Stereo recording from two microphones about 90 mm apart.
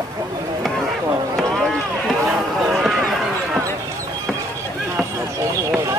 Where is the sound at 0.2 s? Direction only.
35° right (ahead or behind).